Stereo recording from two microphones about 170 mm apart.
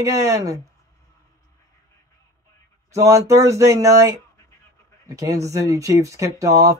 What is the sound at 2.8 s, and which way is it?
Speech, 20° right (ahead or behind).